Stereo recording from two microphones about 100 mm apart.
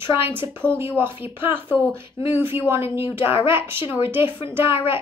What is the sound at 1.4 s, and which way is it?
Speech, 50° left (ahead or behind).